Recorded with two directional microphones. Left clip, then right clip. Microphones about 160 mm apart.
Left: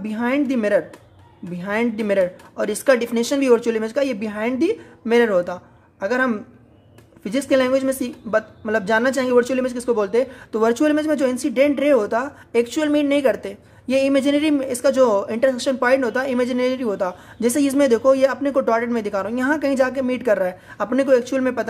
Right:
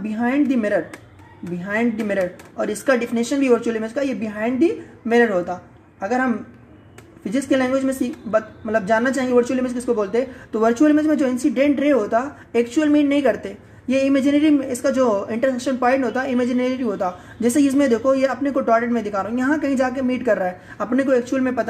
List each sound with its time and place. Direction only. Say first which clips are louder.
0.1 s a woman's voice: right 1 dB; 35° left (ahead or behind)